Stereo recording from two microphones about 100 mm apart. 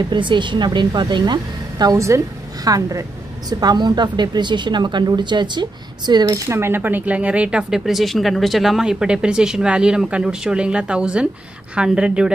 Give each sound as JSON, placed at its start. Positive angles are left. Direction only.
{"t": 0.1, "sound": "a woman's voice", "side_deg": -50}